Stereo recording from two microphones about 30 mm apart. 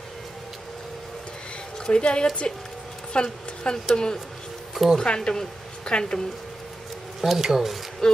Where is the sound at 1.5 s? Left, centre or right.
Left.